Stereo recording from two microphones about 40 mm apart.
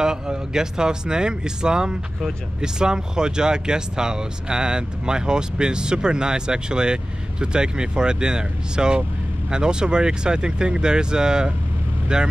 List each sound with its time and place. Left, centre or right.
0.0 s speech: centre